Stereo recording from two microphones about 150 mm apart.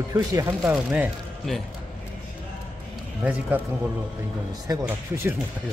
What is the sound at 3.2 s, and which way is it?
Speech, 10° right (ahead or behind).